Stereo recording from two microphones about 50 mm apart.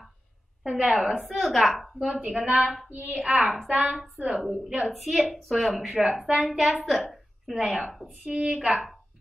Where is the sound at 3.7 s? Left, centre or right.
Right.